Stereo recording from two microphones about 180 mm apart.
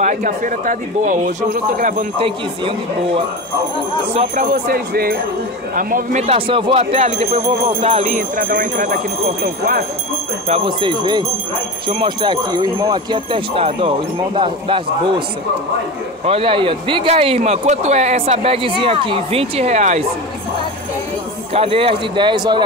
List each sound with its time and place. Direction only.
0.0 s a man's voice: 45° right (ahead or behind)
2.1 s speech: 30° right (ahead or behind)
4.1 s speech: 35° right (ahead or behind)
4.5 s a man's voice: 55° right (ahead or behind)
6.2 s speech: 30° right (ahead or behind); by 9.0 s 50° right (ahead or behind)
10.5 s speech: 30° right (ahead or behind)
16.3 s speech: 30° right (ahead or behind)
21.5 s speech: 30° right (ahead or behind)